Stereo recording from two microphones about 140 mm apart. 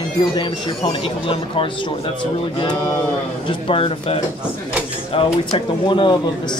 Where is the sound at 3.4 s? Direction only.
40° left (ahead or behind).